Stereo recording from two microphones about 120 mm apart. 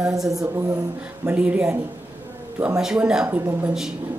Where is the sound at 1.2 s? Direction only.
10° right (ahead or behind).